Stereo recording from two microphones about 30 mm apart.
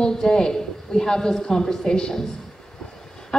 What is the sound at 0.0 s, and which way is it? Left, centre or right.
A woman's voice, left.